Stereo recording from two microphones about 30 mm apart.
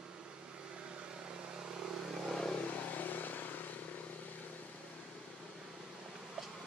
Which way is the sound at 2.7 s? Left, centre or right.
Left.